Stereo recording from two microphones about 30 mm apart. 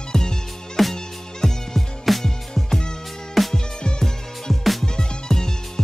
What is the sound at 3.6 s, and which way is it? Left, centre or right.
Music, left.